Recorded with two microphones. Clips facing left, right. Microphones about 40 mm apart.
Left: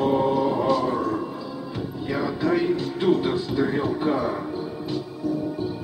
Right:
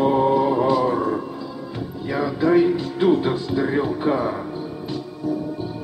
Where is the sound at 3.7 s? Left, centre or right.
Centre.